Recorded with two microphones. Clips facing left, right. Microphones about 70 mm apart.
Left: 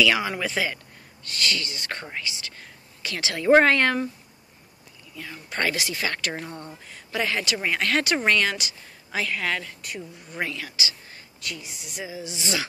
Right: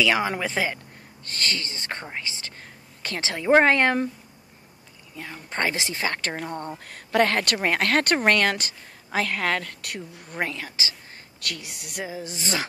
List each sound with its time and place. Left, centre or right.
0.0 s speech: right
5.1 s speech: right
6.8 s speech: right
9.7 s speech: right
11.4 s speech: right